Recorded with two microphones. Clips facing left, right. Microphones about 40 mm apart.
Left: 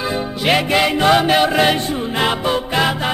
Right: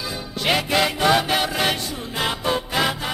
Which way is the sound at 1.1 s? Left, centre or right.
Centre.